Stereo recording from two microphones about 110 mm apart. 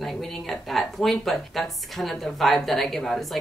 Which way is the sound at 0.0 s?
Centre (ahead or behind).